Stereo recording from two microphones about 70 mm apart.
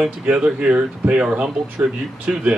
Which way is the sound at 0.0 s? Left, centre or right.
Centre.